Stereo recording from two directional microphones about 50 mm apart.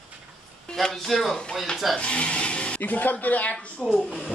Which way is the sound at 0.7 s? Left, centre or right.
Centre.